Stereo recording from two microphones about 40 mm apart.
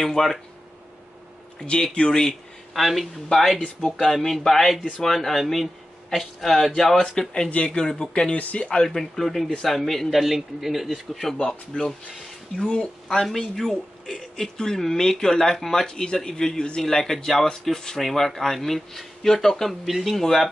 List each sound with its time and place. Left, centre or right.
0.0 s speech: centre
1.7 s speech: left
2.7 s a man's voice: centre
7.5 s speech: left
8.4 s speech: left
8.8 s a man's voice: centre
11.3 s speech: centre
13.2 s speech: centre
15.9 s a man's voice: centre
20.2 s speech: centre